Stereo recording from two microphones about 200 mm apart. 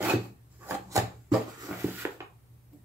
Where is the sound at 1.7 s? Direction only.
5° right (ahead or behind).